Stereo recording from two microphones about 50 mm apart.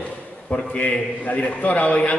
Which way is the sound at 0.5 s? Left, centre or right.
Left.